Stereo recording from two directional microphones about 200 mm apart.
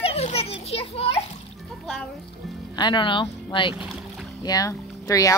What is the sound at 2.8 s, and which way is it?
Speech, 25° left (ahead or behind).